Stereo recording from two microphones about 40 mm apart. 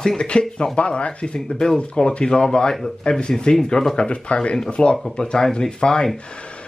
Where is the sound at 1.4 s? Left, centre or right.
Centre.